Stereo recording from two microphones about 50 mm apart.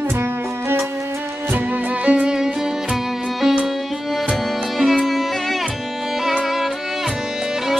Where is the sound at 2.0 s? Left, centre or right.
Right.